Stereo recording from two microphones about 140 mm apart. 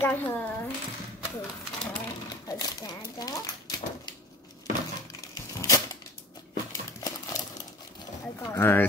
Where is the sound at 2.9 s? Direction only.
30° left (ahead or behind).